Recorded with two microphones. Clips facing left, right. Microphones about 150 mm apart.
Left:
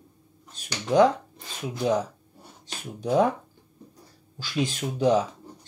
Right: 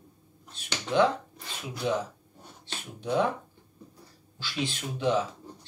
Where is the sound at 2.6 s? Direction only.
40° left (ahead or behind).